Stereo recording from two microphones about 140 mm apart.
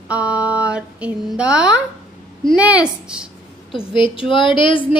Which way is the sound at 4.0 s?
40° left (ahead or behind).